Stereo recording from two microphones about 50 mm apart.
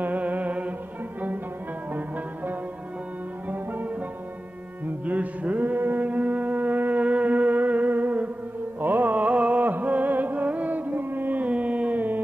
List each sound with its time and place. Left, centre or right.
0.0 s music: right
3.4 s music: right